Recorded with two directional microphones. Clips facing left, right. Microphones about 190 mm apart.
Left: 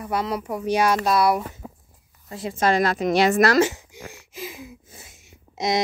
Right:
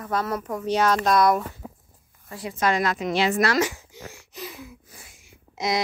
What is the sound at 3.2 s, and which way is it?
Speech, 50° left (ahead or behind).